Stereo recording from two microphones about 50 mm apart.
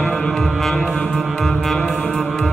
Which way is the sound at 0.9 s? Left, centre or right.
Left.